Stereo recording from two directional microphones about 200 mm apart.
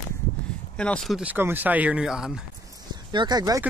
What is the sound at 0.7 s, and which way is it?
Speech, 5° left (ahead or behind).